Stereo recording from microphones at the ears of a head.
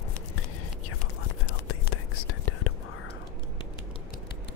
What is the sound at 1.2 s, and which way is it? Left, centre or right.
Whispering, left.